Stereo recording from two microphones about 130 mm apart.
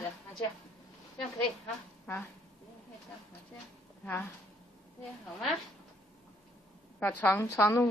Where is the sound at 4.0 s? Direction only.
10° left (ahead or behind).